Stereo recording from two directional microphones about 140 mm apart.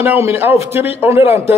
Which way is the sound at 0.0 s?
20° right (ahead or behind).